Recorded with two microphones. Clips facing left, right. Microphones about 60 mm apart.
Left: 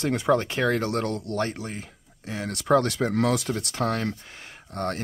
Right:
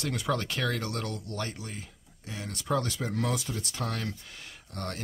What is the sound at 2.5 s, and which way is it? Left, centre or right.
Speech, left.